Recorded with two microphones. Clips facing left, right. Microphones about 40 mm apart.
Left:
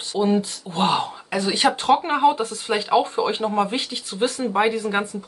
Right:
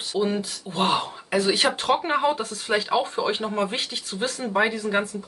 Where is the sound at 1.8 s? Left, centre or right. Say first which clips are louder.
Left 7 dB; centre.